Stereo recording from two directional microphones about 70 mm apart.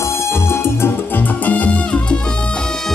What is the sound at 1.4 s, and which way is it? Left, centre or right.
Music, left.